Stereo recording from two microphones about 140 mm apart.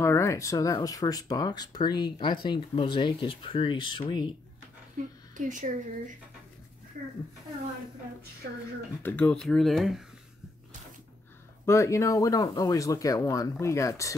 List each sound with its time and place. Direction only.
0.0 s speech: 20° left (ahead or behind)
4.9 s speech: 65° right (ahead or behind)
9.0 s speech: 10° left (ahead or behind)
11.6 s speech: 20° left (ahead or behind)